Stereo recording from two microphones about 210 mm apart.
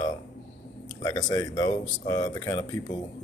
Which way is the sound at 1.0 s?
15° left (ahead or behind).